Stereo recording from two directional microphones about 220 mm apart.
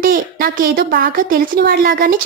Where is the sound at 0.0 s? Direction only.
40° right (ahead or behind).